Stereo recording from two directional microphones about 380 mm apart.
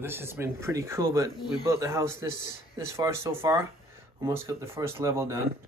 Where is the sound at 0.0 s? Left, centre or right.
Centre.